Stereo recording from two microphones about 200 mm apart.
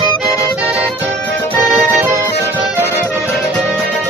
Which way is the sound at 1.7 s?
10° right (ahead or behind).